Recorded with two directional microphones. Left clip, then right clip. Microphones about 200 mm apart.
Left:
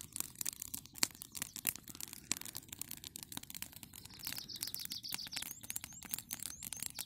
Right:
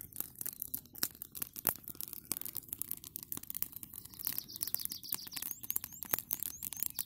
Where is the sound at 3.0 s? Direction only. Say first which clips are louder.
Left 2 dB; 30° left (ahead or behind).